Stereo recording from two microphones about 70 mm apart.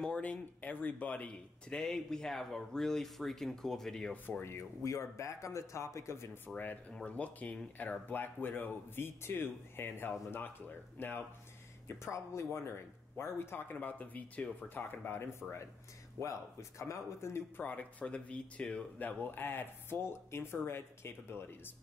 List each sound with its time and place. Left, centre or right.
0.0 s speech: centre
4.4 s speech: left
6.4 s speech: left
11.9 s speech: left
13.7 s speech: left
14.8 s speech: left
17.6 s speech: centre
19.0 s speech: left